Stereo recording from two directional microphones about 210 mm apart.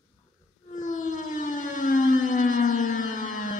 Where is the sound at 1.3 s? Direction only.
35° left (ahead or behind).